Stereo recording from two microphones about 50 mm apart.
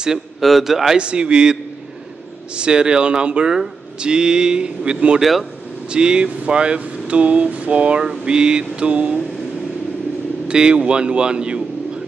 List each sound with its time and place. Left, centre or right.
0.4 s a man's voice: centre
0.9 s speech: centre
10.5 s speech: centre